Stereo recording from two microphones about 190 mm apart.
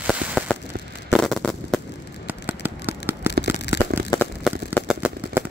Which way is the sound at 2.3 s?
10° right (ahead or behind).